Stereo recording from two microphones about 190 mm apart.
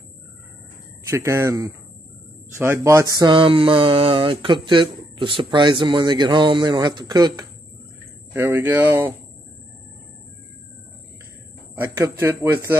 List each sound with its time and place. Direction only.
1.1 s speech: 15° right (ahead or behind)
12.0 s speech: 10° right (ahead or behind)